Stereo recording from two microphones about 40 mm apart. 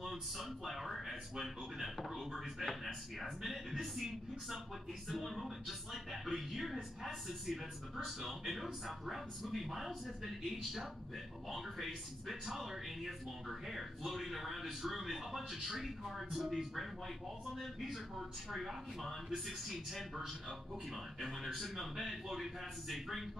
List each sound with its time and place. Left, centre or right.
0.0 s a man's voice: centre
5.0 s a man's voice: centre